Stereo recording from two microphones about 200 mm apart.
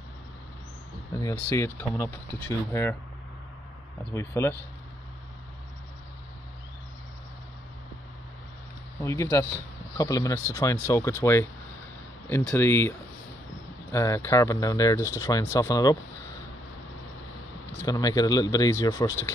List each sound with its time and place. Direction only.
1.1 s speech: 15° left (ahead or behind)
4.1 s speech: 10° left (ahead or behind)
9.0 s speech: 15° left (ahead or behind)
12.3 s speech: 10° left (ahead or behind)
13.9 s speech: 15° left (ahead or behind)
17.7 s speech: 20° left (ahead or behind)